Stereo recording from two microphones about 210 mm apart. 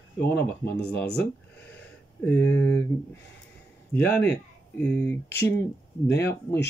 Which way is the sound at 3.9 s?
10° left (ahead or behind).